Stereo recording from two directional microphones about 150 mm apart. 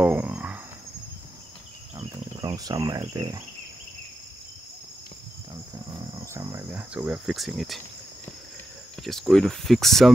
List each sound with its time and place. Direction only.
0.0 s a sound: 10° right (ahead or behind)
2.0 s cricket: 25° right (ahead or behind)
6.2 s speech: 15° right (ahead or behind); by 7.8 s centre (ahead or behind)
9.0 s speech: centre (ahead or behind)